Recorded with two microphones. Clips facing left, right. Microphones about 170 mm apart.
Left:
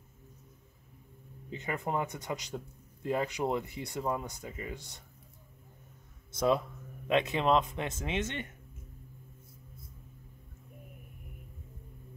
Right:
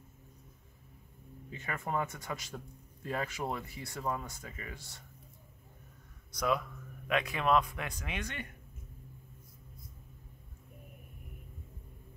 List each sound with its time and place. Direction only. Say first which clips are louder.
1.5 s a man's voice: left 3 dB; 20° left (ahead or behind)
6.3 s a man's voice: left 4 dB; 25° left (ahead or behind)